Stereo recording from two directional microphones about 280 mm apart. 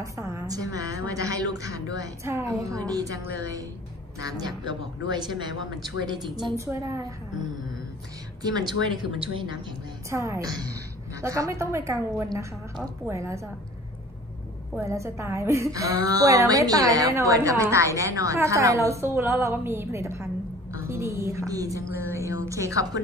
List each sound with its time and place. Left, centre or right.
0.0 s a woman's voice: centre
6.3 s a woman's voice: centre
8.4 s a woman's voice: centre
14.8 s a woman's voice: centre